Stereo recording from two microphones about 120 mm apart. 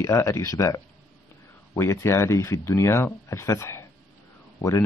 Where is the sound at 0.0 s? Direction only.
25° left (ahead or behind).